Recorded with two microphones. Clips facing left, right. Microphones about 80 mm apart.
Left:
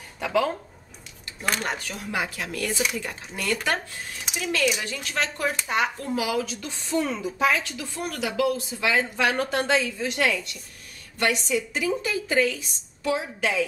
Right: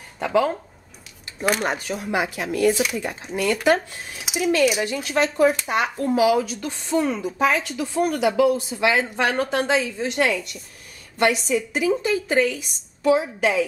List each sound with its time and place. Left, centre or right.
0.2 s speech: right
1.4 s speech: centre
2.7 s speech: centre
9.9 s a woman's voice: right
11.2 s speech: centre
11.7 s speech: centre
12.4 s a woman's voice: centre